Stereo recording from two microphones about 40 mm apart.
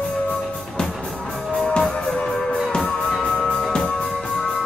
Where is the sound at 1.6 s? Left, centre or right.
Centre.